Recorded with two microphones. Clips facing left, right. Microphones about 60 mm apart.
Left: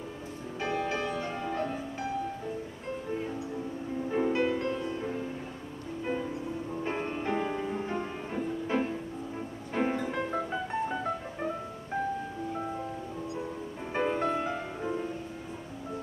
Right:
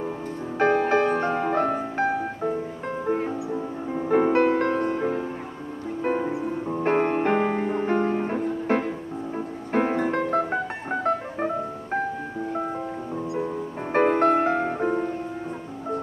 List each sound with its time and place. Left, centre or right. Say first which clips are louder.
0.6 s music: right 12 dB; right
13.9 s music: right 10 dB; right